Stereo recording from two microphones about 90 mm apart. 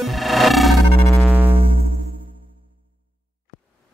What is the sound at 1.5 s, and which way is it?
Music, 90° right.